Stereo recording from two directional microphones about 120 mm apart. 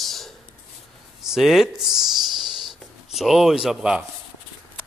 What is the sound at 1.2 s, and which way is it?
Writing, 5° right (ahead or behind).